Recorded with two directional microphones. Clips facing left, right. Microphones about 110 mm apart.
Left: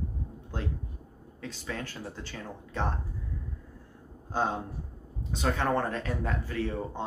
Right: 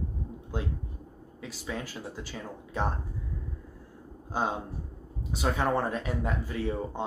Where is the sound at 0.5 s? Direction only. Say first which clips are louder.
Right 1 dB; 10° right (ahead or behind).